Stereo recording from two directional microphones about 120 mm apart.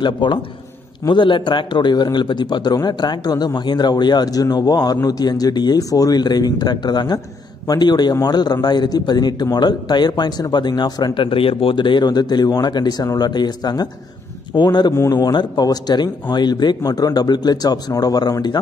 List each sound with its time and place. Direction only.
0.0 s a man's voice: 40° left (ahead or behind)